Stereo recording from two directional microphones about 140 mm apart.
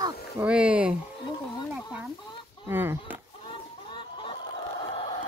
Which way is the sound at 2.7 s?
15° right (ahead or behind).